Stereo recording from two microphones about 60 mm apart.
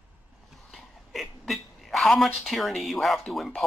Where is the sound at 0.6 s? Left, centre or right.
Centre.